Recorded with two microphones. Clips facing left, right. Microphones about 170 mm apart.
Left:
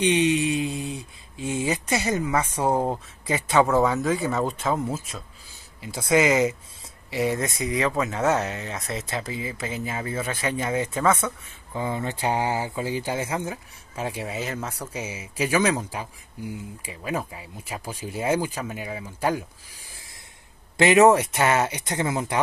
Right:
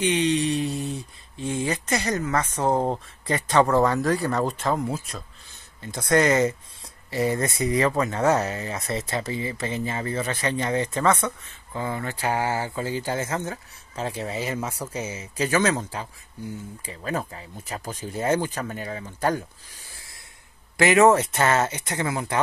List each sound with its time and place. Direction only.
0.0 s speech: 10° left (ahead or behind)
11.8 s speech: 20° left (ahead or behind)
14.4 s speech: centre (ahead or behind)
14.9 s speech: 10° left (ahead or behind)
20.7 s speech: 20° left (ahead or behind)